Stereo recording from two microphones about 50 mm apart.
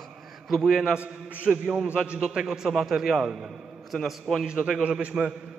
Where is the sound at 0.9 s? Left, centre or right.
Right; by 4.8 s centre.